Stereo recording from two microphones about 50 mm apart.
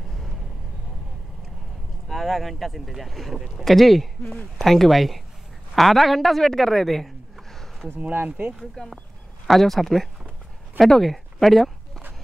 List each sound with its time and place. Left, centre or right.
2.0 s a woman's voice: centre
8.8 s speech: centre
9.5 s speech: centre
10.8 s a sound: centre